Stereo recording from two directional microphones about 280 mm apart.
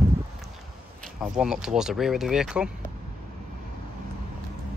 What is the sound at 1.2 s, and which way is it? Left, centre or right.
Speech, centre.